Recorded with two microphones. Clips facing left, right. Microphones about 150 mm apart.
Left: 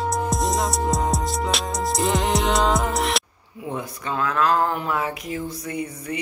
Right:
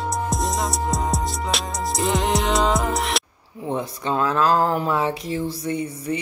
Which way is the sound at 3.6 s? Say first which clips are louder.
Right 4 dB; 30° right (ahead or behind).